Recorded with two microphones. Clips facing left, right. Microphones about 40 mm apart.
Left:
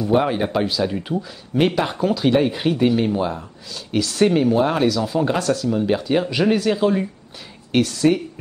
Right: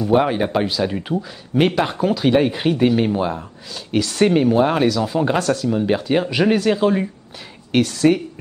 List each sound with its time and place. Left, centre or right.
0.0 s speech: centre